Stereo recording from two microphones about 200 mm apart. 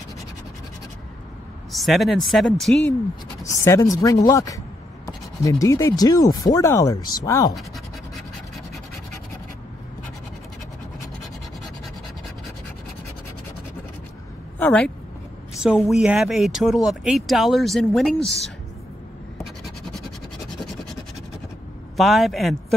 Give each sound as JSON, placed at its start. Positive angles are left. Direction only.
{"t": 1.7, "sound": "speech", "side_deg": 0}
{"t": 3.6, "sound": "speech", "side_deg": 15}
{"t": 14.6, "sound": "speech", "side_deg": 5}
{"t": 21.9, "sound": "speech", "side_deg": 0}